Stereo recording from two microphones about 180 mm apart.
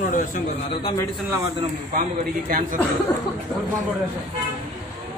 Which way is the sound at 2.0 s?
50° right (ahead or behind).